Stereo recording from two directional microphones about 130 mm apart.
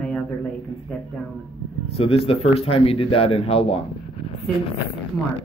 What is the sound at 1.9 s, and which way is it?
Speech, 50° left (ahead or behind).